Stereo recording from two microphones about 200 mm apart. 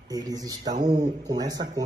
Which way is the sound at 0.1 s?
20° right (ahead or behind).